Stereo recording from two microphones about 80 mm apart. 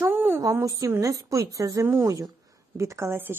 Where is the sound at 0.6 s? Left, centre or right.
Right.